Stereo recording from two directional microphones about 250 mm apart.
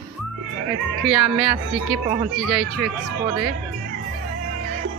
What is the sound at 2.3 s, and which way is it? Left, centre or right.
Speech, centre.